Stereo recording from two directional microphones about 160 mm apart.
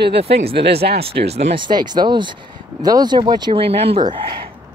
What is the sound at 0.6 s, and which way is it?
Speech, 90° right.